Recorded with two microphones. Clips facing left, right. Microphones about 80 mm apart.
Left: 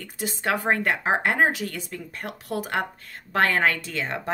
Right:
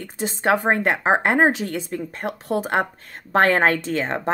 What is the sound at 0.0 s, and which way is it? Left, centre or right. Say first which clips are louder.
A woman's voice: right 5 dB; right.